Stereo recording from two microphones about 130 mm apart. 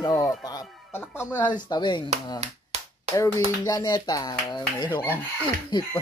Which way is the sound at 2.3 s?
55° right (ahead or behind).